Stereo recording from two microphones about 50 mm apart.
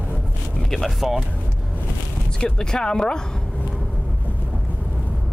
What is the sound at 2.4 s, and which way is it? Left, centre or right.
Speech, centre.